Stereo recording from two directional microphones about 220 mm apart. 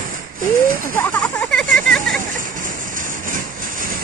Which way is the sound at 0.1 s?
40° right (ahead or behind).